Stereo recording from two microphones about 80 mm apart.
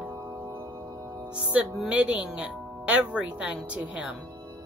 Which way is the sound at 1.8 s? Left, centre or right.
Centre.